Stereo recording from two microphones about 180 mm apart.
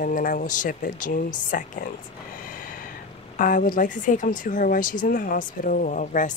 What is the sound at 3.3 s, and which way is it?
Speech, 45° left (ahead or behind).